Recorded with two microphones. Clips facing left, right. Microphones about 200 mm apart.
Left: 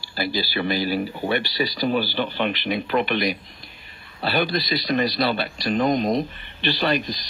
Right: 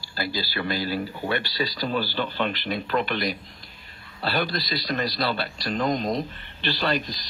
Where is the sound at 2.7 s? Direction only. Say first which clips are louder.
Left 3 dB; 15° left (ahead or behind).